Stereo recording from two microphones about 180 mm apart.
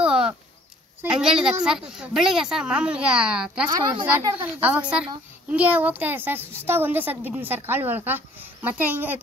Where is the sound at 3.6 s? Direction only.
25° right (ahead or behind).